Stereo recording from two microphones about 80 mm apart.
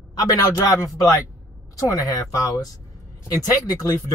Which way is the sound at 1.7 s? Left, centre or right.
Left.